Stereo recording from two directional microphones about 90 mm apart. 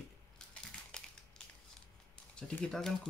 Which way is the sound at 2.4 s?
10° left (ahead or behind).